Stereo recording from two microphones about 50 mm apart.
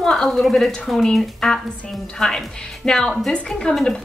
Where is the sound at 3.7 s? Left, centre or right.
Centre.